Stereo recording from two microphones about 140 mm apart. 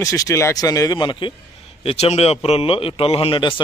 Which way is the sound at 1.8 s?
45° left (ahead or behind).